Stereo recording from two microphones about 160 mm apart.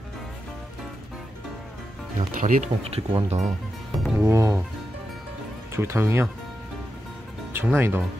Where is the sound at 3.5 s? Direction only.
Centre (ahead or behind).